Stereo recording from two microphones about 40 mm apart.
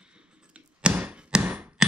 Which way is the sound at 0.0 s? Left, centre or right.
Right.